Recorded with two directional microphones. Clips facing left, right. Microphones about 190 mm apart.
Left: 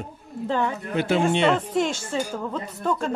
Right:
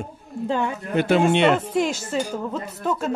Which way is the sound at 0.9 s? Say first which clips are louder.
Right 4 dB; 60° right (ahead or behind).